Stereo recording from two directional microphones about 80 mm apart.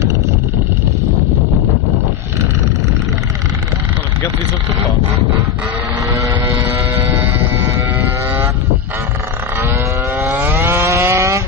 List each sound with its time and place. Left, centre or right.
10.3 s vehicle: right